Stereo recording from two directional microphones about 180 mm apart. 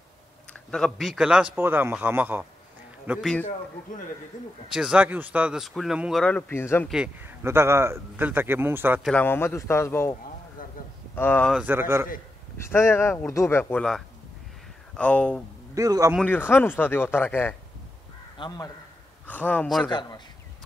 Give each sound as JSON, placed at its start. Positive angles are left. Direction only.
{"t": 0.5, "sound": "speech", "side_deg": 5}
{"t": 4.7, "sound": "speech", "side_deg": -5}
{"t": 6.2, "sound": "speech", "side_deg": 10}
{"t": 6.9, "sound": "a man's voice", "side_deg": -10}
{"t": 9.0, "sound": "speech", "side_deg": 10}
{"t": 10.6, "sound": "a sound", "side_deg": 50}
{"t": 11.1, "sound": "speech", "side_deg": 10}
{"t": 11.5, "sound": "a man's voice", "side_deg": -10}
{"t": 12.5, "sound": "speech", "side_deg": 15}
{"t": 15.7, "sound": "a man's voice", "side_deg": -20}
{"t": 16.2, "sound": "speech", "side_deg": 10}
{"t": 18.4, "sound": "a man's voice", "side_deg": 25}
{"t": 19.2, "sound": "speech", "side_deg": 10}
{"t": 19.9, "sound": "a man's voice", "side_deg": 25}